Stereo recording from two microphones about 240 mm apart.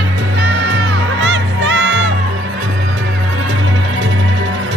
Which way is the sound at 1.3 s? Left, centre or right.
Right.